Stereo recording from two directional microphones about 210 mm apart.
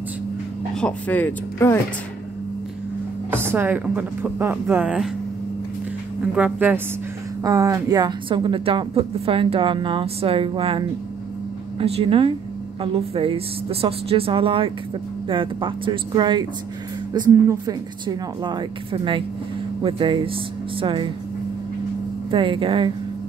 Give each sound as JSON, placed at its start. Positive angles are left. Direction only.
{"t": 0.7, "sound": "speech", "side_deg": 5}
{"t": 3.3, "sound": "speech", "side_deg": -10}
{"t": 6.3, "sound": "a woman's voice", "side_deg": -5}
{"t": 11.8, "sound": "a woman's voice", "side_deg": -25}
{"t": 22.3, "sound": "a woman's voice", "side_deg": -25}